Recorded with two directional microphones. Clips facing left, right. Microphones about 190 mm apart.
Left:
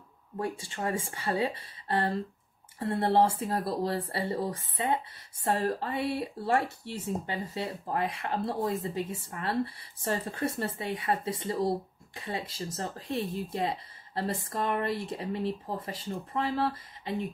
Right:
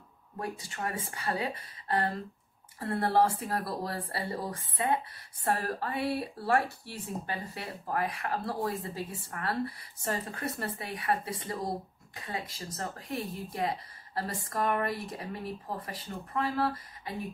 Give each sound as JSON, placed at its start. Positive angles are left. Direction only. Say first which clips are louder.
{"t": 0.4, "sound": "speech", "louder": "left 3 dB", "side_deg": 25}